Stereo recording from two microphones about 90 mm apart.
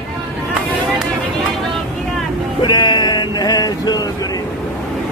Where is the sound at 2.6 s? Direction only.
55° left (ahead or behind).